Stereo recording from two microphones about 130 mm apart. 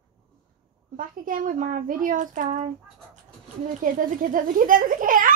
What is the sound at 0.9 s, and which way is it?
A child's voice, 90° right.